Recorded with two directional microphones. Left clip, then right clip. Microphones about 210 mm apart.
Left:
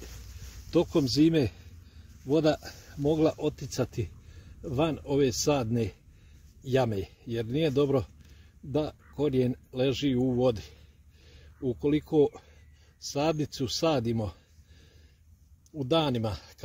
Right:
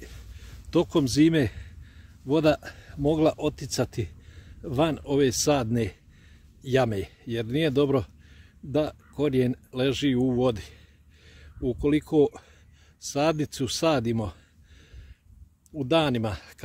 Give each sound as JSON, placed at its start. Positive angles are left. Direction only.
{"t": 0.7, "sound": "speech", "side_deg": -25}
{"t": 11.8, "sound": "speech", "side_deg": -20}
{"t": 15.8, "sound": "speech", "side_deg": -20}